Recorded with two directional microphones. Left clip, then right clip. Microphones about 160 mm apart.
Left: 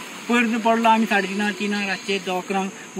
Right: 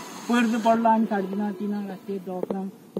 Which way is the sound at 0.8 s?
30° left (ahead or behind).